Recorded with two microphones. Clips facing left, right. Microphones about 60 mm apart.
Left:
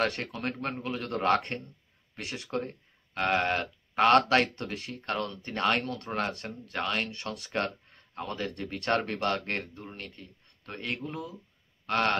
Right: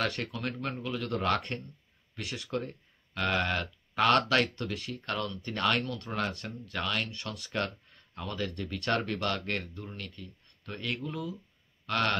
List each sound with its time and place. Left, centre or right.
0.0 s speech: left